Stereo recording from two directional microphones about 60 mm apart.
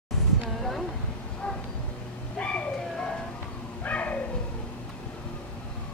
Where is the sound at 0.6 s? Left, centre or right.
Centre.